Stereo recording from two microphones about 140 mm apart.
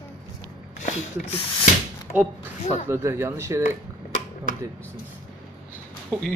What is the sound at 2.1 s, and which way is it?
Speech, 10° right (ahead or behind).